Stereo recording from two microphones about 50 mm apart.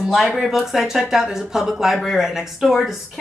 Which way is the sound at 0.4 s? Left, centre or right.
Centre.